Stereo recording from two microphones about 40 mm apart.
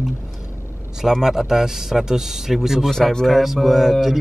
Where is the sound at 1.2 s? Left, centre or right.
Centre.